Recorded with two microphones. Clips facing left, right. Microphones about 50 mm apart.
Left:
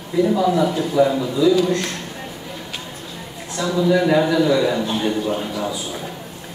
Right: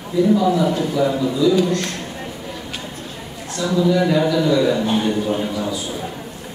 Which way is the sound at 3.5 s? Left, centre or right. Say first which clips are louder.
Even; centre.